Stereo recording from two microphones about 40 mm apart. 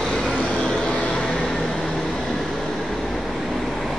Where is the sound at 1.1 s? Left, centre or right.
Left; by 3.9 s centre.